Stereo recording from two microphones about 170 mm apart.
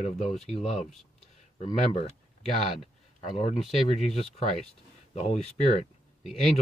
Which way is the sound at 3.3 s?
35° left (ahead or behind).